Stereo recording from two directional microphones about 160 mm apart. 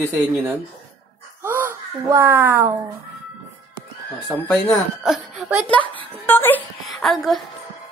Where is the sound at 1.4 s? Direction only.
15° right (ahead or behind).